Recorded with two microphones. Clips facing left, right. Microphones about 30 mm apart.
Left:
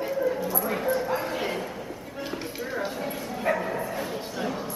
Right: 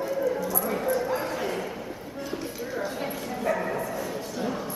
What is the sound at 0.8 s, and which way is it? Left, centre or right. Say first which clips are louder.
Bow-wow: even; centre.